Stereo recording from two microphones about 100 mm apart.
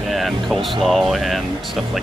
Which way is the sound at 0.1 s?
Centre (ahead or behind).